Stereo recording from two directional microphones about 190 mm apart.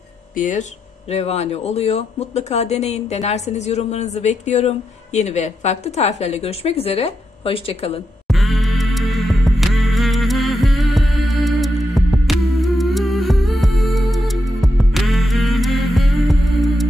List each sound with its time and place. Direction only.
0.3 s speech: 40° left (ahead or behind)
8.3 s music: centre (ahead or behind)